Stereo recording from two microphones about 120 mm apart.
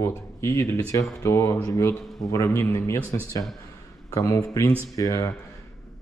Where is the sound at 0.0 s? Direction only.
25° left (ahead or behind).